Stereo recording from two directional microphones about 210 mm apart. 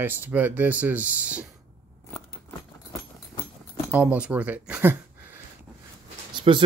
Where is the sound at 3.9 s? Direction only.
5° right (ahead or behind).